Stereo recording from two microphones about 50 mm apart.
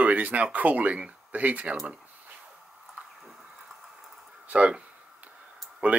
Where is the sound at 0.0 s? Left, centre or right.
Right.